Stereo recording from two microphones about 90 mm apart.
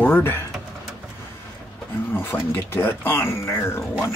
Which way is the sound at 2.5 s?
25° left (ahead or behind).